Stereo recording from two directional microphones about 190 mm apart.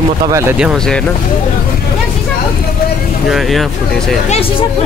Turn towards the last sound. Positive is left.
turn(degrees=0)  # may be behind; listen again after turning